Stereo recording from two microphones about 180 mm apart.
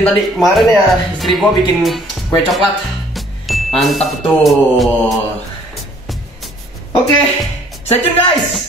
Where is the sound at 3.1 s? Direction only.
Centre (ahead or behind).